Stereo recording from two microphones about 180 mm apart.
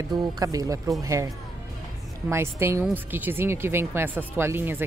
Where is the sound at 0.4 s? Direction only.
20° right (ahead or behind).